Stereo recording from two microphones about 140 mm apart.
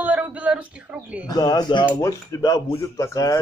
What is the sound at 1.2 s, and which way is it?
Speech, 30° left (ahead or behind).